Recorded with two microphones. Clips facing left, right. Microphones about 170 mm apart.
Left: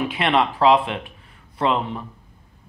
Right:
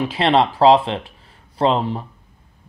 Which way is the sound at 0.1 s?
30° right (ahead or behind).